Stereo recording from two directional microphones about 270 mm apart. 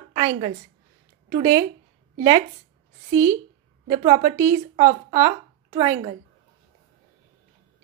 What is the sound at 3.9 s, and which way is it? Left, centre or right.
A woman's voice, centre.